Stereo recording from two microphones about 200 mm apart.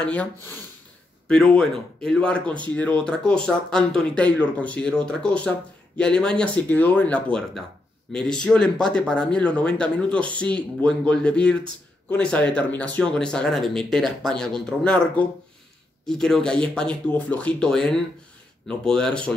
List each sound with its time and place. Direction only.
0.0 s speech: 5° left (ahead or behind)